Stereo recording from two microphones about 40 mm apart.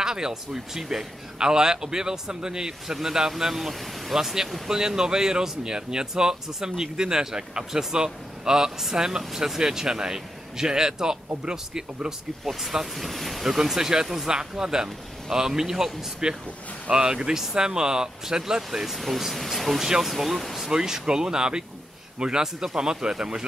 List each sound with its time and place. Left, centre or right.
0.0 s speech: centre
12.4 s speech: centre
20.7 s speech: centre